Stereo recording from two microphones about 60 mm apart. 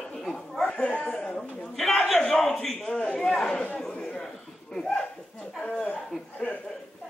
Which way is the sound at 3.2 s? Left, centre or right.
Centre.